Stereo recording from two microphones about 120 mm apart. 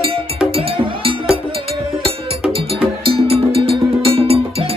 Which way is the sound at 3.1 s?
50° right (ahead or behind).